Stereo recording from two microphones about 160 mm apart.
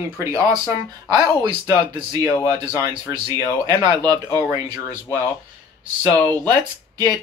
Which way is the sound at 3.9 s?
25° right (ahead or behind).